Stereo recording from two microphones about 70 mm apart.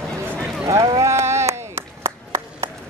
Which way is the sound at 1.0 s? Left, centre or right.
Right.